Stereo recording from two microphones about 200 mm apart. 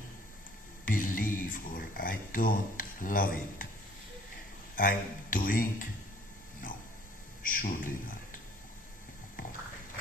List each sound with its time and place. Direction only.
0.8 s a sound: 40° left (ahead or behind)
4.7 s speech: 45° left (ahead or behind)
7.4 s speech: 45° left (ahead or behind)